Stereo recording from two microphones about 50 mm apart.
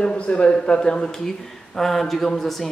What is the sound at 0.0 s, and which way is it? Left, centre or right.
Speech, centre.